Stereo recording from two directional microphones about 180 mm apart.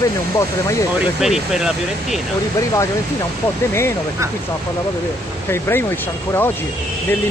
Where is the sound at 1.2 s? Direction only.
Centre (ahead or behind).